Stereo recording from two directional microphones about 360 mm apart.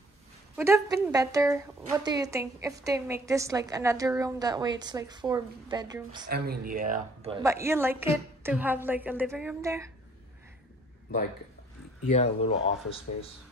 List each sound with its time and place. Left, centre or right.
0.6 s a woman's voice: centre
6.3 s a woman's voice: right; by 9.8 s centre
12.1 s speech: centre